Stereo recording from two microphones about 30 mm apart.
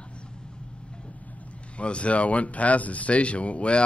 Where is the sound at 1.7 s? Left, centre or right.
Left.